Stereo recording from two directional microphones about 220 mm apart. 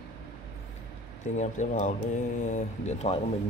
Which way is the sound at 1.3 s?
35° left (ahead or behind).